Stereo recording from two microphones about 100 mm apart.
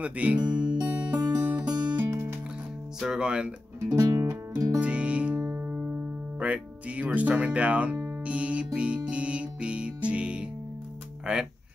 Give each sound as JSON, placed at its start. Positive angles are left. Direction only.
{"t": 0.0, "sound": "music", "side_deg": -15}
{"t": 0.5, "sound": "music", "side_deg": -50}
{"t": 0.8, "sound": "music", "side_deg": -15}
{"t": 3.0, "sound": "music", "side_deg": -10}
{"t": 3.9, "sound": "music", "side_deg": -35}
{"t": 4.7, "sound": "music", "side_deg": -15}
{"t": 6.4, "sound": "speech", "side_deg": -15}
{"t": 8.7, "sound": "music", "side_deg": -10}